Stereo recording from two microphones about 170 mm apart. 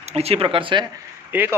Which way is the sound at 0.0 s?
40° right (ahead or behind).